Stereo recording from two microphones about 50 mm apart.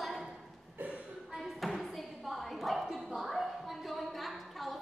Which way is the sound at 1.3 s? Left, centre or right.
Centre.